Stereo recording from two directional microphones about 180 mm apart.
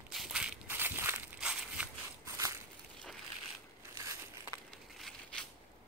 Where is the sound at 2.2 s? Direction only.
15° right (ahead or behind).